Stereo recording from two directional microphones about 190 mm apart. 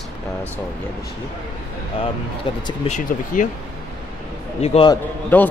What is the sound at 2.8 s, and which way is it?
Speech, 40° left (ahead or behind).